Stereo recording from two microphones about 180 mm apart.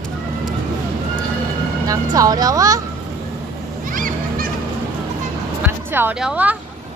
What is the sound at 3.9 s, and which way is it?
Goose, 50° right (ahead or behind).